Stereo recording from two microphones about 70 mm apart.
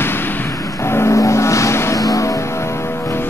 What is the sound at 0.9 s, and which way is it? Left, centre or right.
Vehicle, left.